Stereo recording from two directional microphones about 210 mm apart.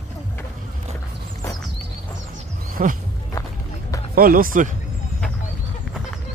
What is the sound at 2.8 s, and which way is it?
Speech, 40° right (ahead or behind).